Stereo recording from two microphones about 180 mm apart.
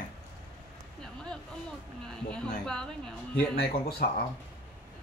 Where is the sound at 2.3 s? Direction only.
5° left (ahead or behind).